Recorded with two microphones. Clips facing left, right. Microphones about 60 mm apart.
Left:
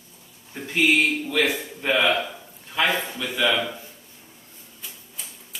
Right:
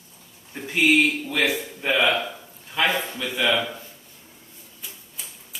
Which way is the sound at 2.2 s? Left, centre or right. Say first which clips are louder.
Right 2 dB; centre.